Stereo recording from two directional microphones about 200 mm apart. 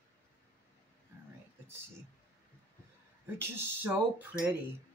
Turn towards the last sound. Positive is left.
turn(degrees=-5)  # may be behind; listen again after turning